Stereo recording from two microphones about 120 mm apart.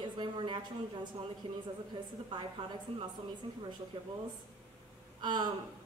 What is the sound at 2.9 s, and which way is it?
Speech, 55° right (ahead or behind).